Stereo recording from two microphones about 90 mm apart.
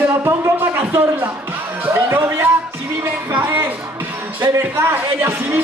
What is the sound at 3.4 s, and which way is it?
Speech, 25° right (ahead or behind).